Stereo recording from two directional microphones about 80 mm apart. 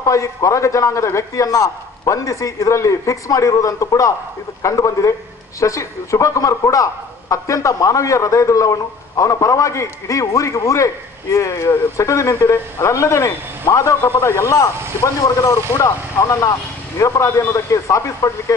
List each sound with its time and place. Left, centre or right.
0.0 s a man's voice: left